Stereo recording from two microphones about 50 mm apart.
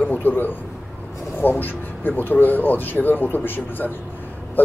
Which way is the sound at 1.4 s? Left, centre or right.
Left.